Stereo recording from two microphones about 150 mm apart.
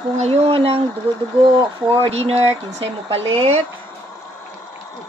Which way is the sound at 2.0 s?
45° right (ahead or behind).